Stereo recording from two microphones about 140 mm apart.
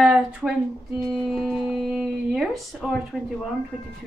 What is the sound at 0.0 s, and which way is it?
A woman's voice, 5° right (ahead or behind).